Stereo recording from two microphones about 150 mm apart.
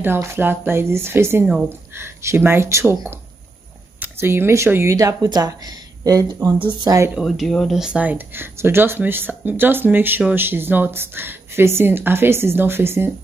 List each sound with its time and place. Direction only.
0.0 s speech: 15° right (ahead or behind)
7.2 s speech: centre (ahead or behind)